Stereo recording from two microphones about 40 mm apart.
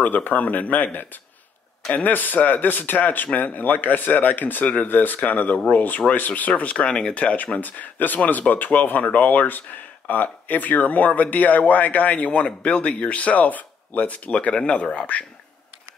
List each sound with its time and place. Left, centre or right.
0.0 s speech: left
4.8 s speech: left
5.2 s speech: left
7.6 s speech: left